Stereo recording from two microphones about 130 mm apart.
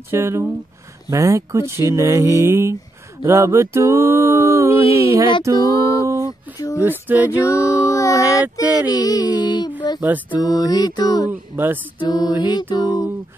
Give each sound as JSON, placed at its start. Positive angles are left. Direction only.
{"t": 0.1, "sound": "a sound", "side_deg": -20}
{"t": 5.7, "sound": "speech", "side_deg": 25}
{"t": 6.2, "sound": "a sound", "side_deg": 25}
{"t": 6.8, "sound": "speech", "side_deg": -15}
{"t": 7.8, "sound": "speech", "side_deg": 25}
{"t": 9.9, "sound": "speech", "side_deg": -10}
{"t": 10.4, "sound": "a capella", "side_deg": 30}
{"t": 11.2, "sound": "speech", "side_deg": -15}
{"t": 12.0, "sound": "a capella", "side_deg": 30}